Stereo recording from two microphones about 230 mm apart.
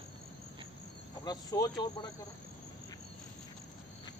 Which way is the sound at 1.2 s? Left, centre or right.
Centre.